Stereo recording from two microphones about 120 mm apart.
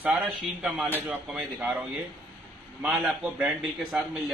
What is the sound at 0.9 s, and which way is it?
A man's voice, 15° right (ahead or behind).